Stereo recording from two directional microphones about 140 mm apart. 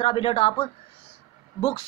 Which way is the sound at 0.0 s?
40° left (ahead or behind).